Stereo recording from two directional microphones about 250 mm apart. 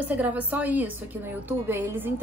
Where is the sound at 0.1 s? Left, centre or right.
Centre.